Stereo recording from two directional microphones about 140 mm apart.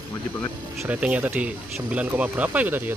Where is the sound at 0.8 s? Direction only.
10° right (ahead or behind).